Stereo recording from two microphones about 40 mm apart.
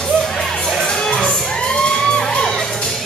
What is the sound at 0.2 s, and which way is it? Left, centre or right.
Music, centre.